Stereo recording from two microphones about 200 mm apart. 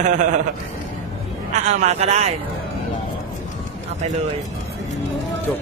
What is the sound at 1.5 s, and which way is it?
Speech, 35° right (ahead or behind).